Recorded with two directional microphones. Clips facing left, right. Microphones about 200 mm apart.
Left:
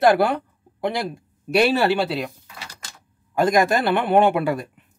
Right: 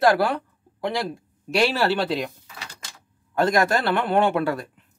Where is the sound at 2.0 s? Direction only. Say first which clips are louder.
Even; 5° left (ahead or behind).